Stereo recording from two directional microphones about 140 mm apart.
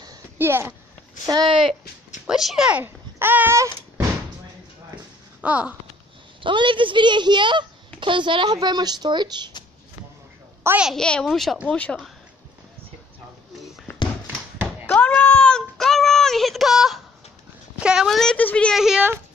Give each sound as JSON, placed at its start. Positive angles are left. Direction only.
{"t": 0.4, "sound": "speech", "side_deg": -15}
{"t": 1.2, "sound": "a woman's voice", "side_deg": -30}
{"t": 2.2, "sound": "a child's voice", "side_deg": -5}
{"t": 5.4, "sound": "speech", "side_deg": -10}
{"t": 6.4, "sound": "a woman's voice", "side_deg": -35}
{"t": 10.8, "sound": "speech", "side_deg": 0}
{"t": 13.9, "sound": "a sound", "side_deg": 20}
{"t": 17.7, "sound": "speech", "side_deg": -5}
{"t": 18.8, "sound": "speech", "side_deg": -5}